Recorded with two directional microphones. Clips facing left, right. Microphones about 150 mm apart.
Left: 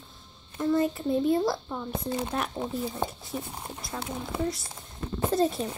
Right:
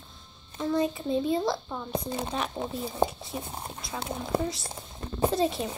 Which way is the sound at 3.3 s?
15° right (ahead or behind).